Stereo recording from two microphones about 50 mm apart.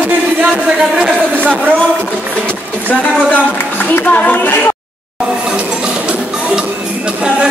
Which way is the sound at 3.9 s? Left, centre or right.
Left.